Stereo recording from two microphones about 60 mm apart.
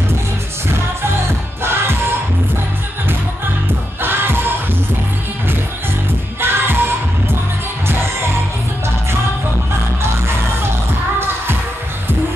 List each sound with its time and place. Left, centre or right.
1.6 s music: right
4.0 s music: right
6.4 s music: right